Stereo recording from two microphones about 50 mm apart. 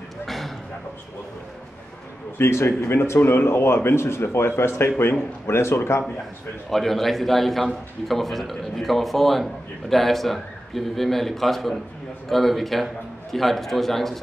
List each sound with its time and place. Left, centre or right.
2.3 s speech: left
6.7 s a man's voice: centre